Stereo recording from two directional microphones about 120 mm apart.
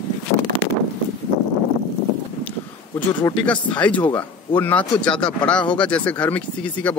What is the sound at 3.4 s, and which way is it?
Speech, 10° left (ahead or behind).